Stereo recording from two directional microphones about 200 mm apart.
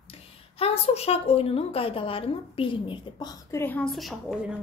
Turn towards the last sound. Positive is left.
turn(degrees=0)  # may be behind; listen again after turning